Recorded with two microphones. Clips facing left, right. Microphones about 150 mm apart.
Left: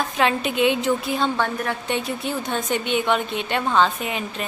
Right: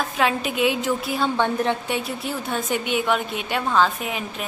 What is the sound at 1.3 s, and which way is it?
Speech, 20° right (ahead or behind).